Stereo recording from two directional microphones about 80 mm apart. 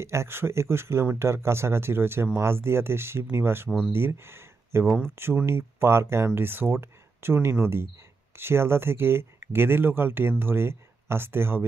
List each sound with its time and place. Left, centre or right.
0.0 s speech: right